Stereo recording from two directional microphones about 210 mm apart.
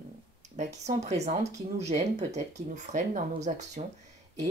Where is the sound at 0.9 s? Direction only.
30° right (ahead or behind).